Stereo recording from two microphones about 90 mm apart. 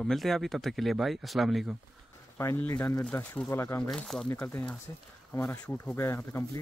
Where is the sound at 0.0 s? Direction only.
5° left (ahead or behind).